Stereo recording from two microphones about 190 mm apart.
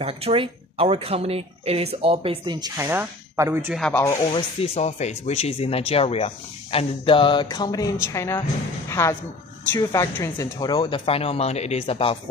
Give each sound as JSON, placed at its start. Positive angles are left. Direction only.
{"t": 0.0, "sound": "speech", "side_deg": -30}
{"t": 3.9, "sound": "speech", "side_deg": 15}
{"t": 4.3, "sound": "speech", "side_deg": 35}
{"t": 9.8, "sound": "speech", "side_deg": 15}